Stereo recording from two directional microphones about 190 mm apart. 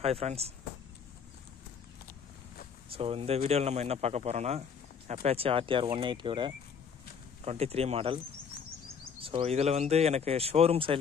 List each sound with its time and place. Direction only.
0.0 s speech: 35° right (ahead or behind)
2.9 s speech: 30° right (ahead or behind)
9.2 s speech: 30° right (ahead or behind)